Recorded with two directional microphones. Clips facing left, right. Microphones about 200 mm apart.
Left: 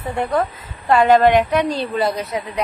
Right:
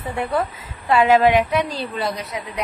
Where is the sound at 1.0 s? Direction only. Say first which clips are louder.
Left 2 dB; 5° right (ahead or behind).